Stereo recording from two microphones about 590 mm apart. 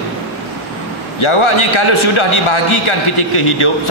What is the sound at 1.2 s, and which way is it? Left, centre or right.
A man's voice, left.